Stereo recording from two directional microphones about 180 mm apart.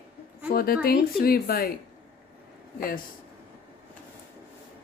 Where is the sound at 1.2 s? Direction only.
55° left (ahead or behind).